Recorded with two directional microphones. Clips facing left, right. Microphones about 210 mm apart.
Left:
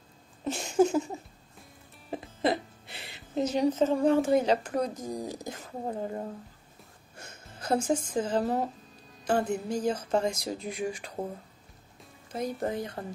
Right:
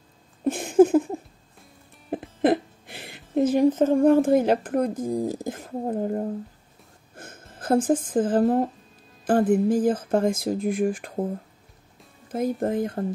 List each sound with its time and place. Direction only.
0.4 s a sound: 55° right (ahead or behind)
2.0 s speech: 55° right (ahead or behind)
7.2 s music: 50° right (ahead or behind)
7.5 s speech: 50° right (ahead or behind)
12.3 s speech: 50° right (ahead or behind)